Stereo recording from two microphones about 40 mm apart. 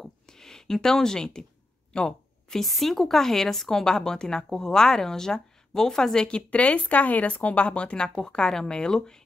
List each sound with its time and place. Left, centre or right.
0.0 s a sound: centre
1.9 s speech: left
2.5 s speech: centre